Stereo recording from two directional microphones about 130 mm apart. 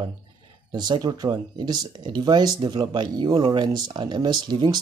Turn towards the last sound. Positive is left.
turn(degrees=-35)  # may be behind; listen again after turning